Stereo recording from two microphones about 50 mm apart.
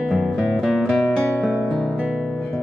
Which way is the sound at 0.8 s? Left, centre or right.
Centre.